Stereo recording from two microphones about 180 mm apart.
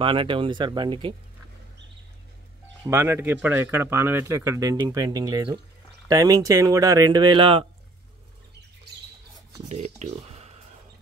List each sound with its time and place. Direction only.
0.0 s speech: 30° right (ahead or behind)
2.8 s speech: 15° right (ahead or behind)
9.7 s speech: 40° right (ahead or behind)